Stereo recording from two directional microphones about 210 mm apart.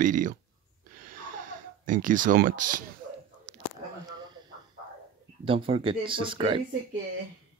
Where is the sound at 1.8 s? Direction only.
40° right (ahead or behind).